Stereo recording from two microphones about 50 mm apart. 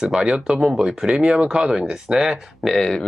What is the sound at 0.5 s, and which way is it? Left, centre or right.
Speech, centre.